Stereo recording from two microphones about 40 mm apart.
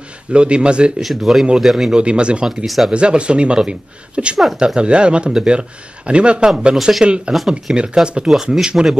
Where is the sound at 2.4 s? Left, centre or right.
Centre.